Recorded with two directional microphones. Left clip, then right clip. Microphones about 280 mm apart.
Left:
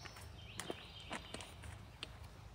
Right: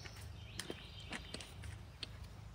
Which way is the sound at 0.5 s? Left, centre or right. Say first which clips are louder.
Left 1 dB; left.